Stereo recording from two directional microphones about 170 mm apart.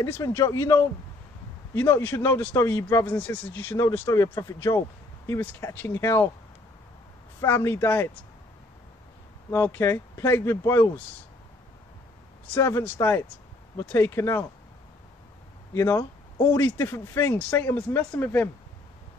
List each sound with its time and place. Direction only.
0.0 s speech: 15° left (ahead or behind)
7.3 s speech: 15° left (ahead or behind)
9.5 s speech: 15° left (ahead or behind)
12.4 s speech: 15° left (ahead or behind)
15.7 s speech: 15° left (ahead or behind)